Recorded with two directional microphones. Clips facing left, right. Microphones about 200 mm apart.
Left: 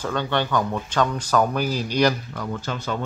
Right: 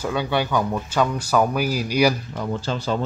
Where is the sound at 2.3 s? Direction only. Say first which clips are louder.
Right 3 dB; 30° right (ahead or behind).